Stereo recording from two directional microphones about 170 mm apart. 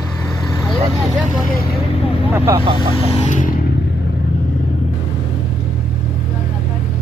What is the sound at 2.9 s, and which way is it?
Speech, 35° left (ahead or behind).